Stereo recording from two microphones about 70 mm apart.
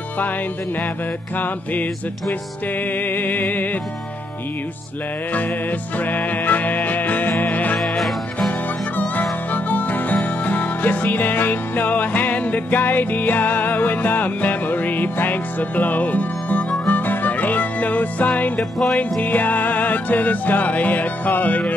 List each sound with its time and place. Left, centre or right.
1.4 s music: left
3.1 s music: left
5.9 s music: left
18.6 s music: centre
19.2 s music: left